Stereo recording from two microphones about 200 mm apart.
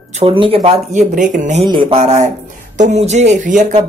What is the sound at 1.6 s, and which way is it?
A woman's voice, 25° right (ahead or behind).